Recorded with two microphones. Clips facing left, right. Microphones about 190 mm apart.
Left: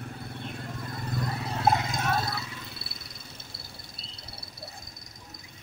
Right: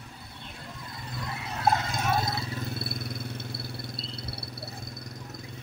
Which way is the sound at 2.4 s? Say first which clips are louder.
Right 8 dB; 40° right (ahead or behind).